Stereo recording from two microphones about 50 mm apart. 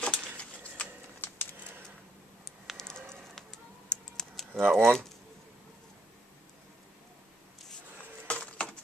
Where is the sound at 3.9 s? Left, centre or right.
Centre.